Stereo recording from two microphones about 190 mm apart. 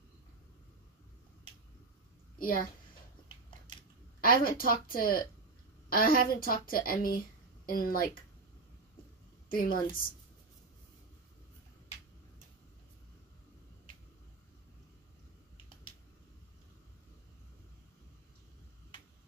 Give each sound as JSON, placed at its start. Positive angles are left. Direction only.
{"t": 2.3, "sound": "a woman's voice", "side_deg": 50}
{"t": 4.2, "sound": "a woman's voice", "side_deg": 50}
{"t": 9.5, "sound": "a woman's voice", "side_deg": 50}